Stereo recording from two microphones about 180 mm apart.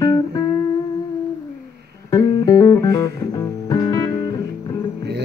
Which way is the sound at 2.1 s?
20° left (ahead or behind).